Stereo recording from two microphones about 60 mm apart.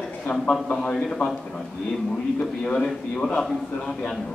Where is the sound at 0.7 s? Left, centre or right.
Centre.